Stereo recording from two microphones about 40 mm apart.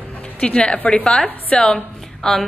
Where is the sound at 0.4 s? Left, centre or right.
Left.